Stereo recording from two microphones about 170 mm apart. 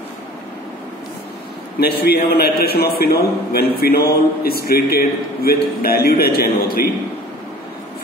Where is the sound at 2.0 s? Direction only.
65° left (ahead or behind).